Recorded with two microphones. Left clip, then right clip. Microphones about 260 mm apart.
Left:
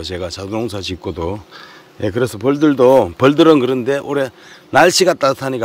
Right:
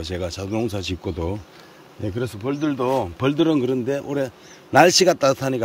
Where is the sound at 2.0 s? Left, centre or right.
Centre.